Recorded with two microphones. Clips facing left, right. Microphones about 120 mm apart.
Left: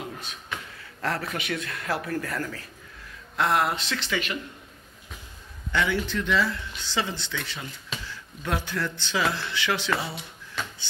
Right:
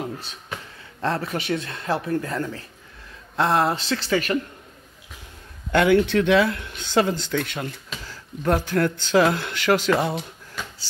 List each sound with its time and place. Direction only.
0.0 s beatboxing: 30° right (ahead or behind)
1.0 s speech: 25° right (ahead or behind)
5.7 s speech: 55° right (ahead or behind)